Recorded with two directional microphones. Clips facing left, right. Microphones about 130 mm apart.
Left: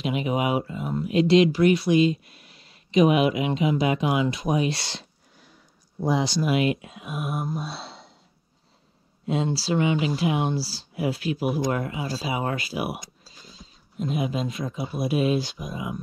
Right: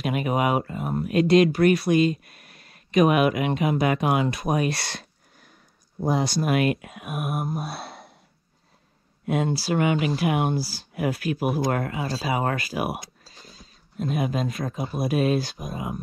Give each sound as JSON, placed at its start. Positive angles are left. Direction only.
{"t": 0.0, "sound": "speech", "side_deg": -50}
{"t": 9.3, "sound": "speech", "side_deg": -55}
{"t": 11.4, "sound": "speech", "side_deg": 0}
{"t": 12.2, "sound": "speech", "side_deg": -50}
{"t": 12.7, "sound": "speech", "side_deg": -40}
{"t": 13.9, "sound": "speech", "side_deg": -50}